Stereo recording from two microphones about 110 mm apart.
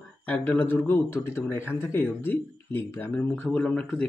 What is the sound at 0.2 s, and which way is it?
Speech, 15° left (ahead or behind).